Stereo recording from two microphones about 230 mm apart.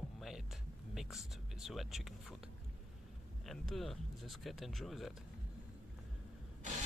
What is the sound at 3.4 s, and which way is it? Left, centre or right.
Speech, centre.